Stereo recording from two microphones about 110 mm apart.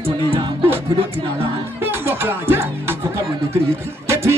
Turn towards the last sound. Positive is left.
turn(degrees=-25)  # may be behind; listen again after turning